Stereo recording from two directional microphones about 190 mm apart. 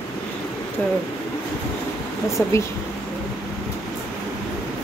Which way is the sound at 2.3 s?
15° left (ahead or behind).